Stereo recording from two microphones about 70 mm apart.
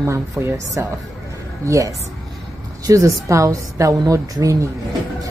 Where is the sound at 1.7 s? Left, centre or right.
Right.